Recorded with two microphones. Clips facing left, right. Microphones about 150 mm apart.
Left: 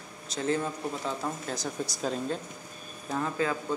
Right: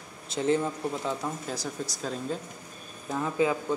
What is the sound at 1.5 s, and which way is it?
Speech, 10° right (ahead or behind).